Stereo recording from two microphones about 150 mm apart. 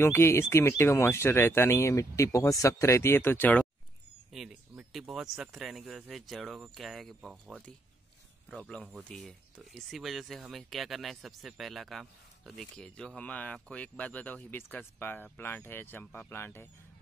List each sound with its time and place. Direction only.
0.0 s speech: 15° left (ahead or behind)
4.3 s speech: 5° right (ahead or behind); by 16.6 s 15° left (ahead or behind)